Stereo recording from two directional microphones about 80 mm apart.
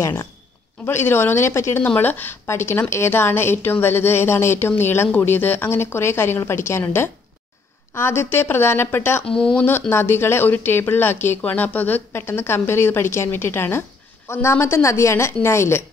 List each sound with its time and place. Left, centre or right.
0.0 s speech: left
9.2 s speech: centre
9.6 s speech: left